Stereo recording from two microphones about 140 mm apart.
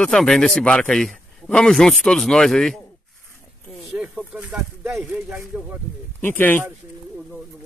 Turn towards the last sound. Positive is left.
turn(degrees=15)  # may be behind; listen again after turning